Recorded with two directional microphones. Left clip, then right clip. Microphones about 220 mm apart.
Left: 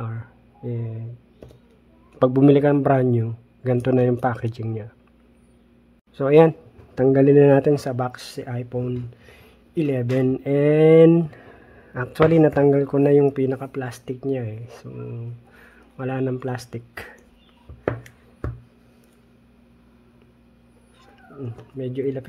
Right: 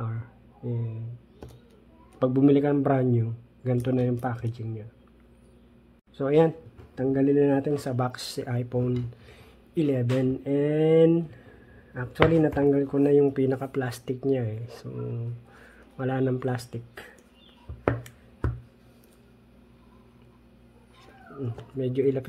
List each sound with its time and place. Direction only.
0.0 s a sound: 10° left (ahead or behind)
2.1 s speech: 30° left (ahead or behind)
6.1 s speech: 20° left (ahead or behind)
7.0 s speech: 30° left (ahead or behind)
7.9 s speech: 10° left (ahead or behind)
17.8 s a sound: centre (ahead or behind)
21.4 s speech: centre (ahead or behind)